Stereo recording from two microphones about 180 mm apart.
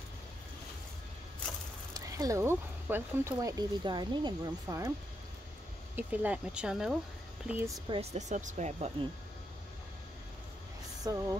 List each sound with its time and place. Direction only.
2.0 s speech: 20° right (ahead or behind)
5.9 s speech: 5° right (ahead or behind)
7.9 s speech: 35° right (ahead or behind)
11.1 s speech: 20° right (ahead or behind)